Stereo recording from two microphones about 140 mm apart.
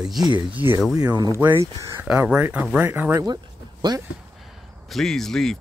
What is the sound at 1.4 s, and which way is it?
Speech, 20° right (ahead or behind).